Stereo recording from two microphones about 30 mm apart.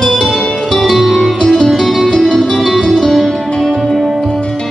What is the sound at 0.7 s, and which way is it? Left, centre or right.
Music, centre.